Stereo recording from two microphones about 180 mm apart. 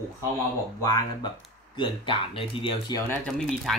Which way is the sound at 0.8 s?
20° left (ahead or behind).